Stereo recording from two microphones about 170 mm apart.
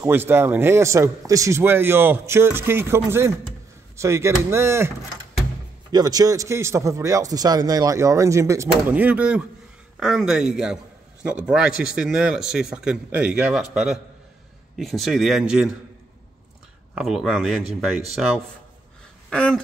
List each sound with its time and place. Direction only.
0.0 s a man's voice: 15° right (ahead or behind)
16.9 s a man's voice: centre (ahead or behind)
19.3 s a man's voice: 5° left (ahead or behind)